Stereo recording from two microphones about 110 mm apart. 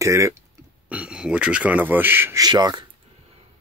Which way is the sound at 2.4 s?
40° right (ahead or behind).